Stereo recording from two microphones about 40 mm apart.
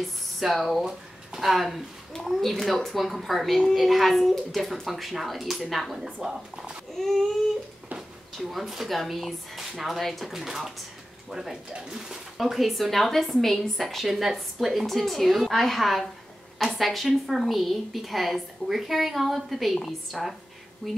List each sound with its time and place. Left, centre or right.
0.0 s a woman's voice: centre
6.2 s speech: right
7.0 s a sound: centre
8.4 s a woman's voice: centre
10.3 s speech: centre
12.4 s a woman's voice: centre
20.8 s a sound: centre